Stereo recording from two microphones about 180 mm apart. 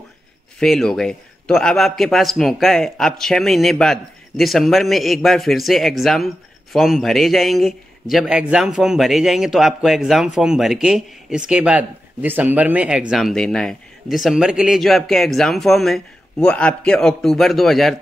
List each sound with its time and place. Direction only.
0.6 s a man's voice: 5° left (ahead or behind)